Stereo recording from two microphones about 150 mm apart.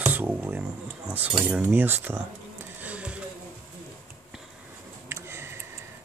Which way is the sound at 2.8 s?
10° right (ahead or behind).